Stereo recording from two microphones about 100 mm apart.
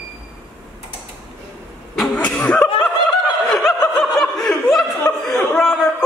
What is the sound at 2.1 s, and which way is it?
Snicker, 15° left (ahead or behind).